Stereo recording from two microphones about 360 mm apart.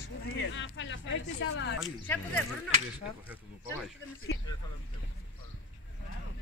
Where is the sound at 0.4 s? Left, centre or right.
Left.